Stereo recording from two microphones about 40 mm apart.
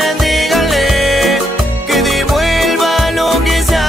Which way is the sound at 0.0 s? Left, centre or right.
Centre.